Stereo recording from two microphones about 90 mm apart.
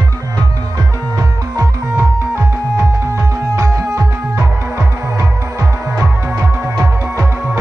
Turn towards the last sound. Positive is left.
turn(degrees=-25)  # may be behind; listen again after turning